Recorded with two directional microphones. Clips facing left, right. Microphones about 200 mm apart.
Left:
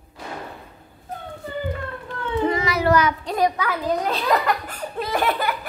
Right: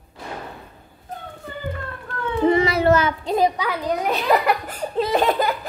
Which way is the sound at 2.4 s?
25° right (ahead or behind).